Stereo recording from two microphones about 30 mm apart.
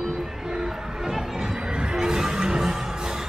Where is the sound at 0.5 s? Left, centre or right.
Right.